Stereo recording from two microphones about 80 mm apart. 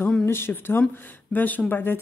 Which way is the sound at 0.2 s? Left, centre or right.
Left.